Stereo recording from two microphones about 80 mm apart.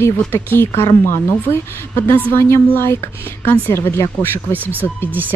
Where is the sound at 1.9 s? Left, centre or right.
Left.